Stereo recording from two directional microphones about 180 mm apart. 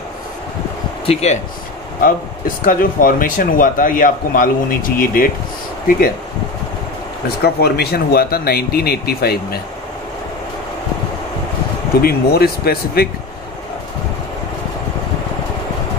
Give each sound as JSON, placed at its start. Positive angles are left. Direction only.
{"t": 1.0, "sound": "speech", "side_deg": 35}
{"t": 2.0, "sound": "speech", "side_deg": 50}
{"t": 7.4, "sound": "speech", "side_deg": 65}
{"t": 12.0, "sound": "speech", "side_deg": 60}